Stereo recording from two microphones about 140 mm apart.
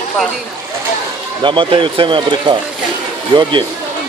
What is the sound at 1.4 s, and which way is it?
Speech, 35° right (ahead or behind).